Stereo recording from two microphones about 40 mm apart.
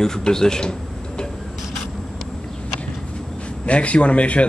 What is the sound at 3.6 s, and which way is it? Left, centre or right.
Speech, left.